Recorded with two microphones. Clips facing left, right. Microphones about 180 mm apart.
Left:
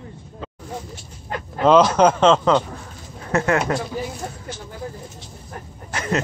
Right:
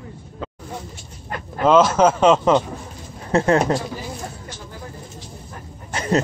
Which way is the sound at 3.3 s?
30° right (ahead or behind).